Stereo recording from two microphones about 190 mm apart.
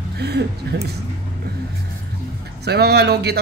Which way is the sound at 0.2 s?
60° right (ahead or behind).